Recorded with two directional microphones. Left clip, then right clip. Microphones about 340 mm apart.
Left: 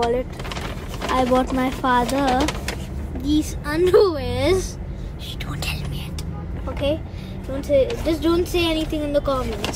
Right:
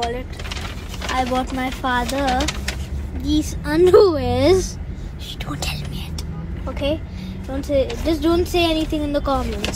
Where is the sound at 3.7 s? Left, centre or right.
Centre.